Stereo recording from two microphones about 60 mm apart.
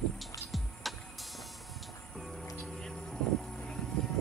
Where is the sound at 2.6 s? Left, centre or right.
Centre.